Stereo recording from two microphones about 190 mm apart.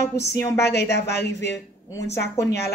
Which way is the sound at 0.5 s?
60° left (ahead or behind).